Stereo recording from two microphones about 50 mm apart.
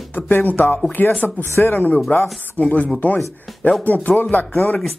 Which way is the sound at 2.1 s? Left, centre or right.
Left.